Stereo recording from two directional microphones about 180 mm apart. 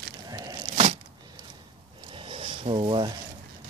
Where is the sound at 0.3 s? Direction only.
20° right (ahead or behind).